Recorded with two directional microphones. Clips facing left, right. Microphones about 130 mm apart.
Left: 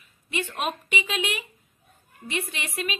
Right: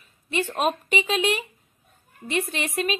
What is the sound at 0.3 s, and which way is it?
A woman's voice, 35° right (ahead or behind).